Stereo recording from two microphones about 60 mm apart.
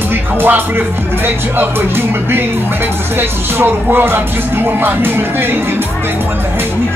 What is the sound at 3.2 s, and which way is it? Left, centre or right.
Speech, right.